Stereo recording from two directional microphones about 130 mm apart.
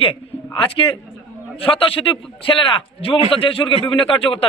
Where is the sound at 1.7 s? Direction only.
45° left (ahead or behind).